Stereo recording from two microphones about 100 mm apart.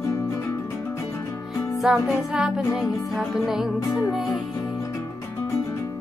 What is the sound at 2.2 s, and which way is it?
Music, 5° right (ahead or behind).